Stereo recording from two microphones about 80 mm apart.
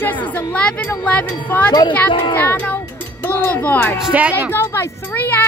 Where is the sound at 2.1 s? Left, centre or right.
Left.